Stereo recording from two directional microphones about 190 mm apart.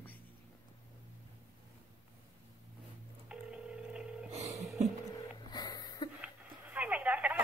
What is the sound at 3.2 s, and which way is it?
Telephone, 5° right (ahead or behind).